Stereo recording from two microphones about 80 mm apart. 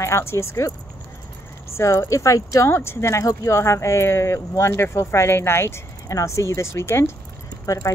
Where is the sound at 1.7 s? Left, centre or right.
Left.